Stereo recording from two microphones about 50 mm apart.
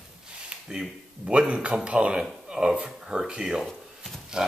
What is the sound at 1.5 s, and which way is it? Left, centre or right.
Speech, right.